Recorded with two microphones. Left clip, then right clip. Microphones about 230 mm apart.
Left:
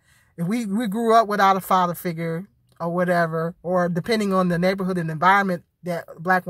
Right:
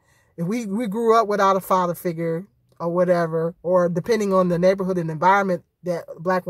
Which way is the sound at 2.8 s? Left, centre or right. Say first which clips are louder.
Right 2 dB; left.